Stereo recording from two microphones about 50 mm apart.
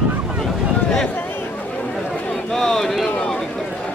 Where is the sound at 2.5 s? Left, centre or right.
Centre.